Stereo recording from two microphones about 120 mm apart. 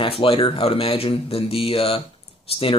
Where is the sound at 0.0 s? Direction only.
50° left (ahead or behind).